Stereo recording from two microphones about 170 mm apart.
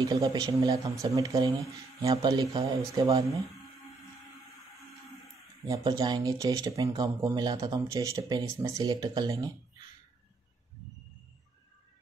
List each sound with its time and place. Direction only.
0.0 s speech: 20° right (ahead or behind)
5.7 s speech: 25° right (ahead or behind)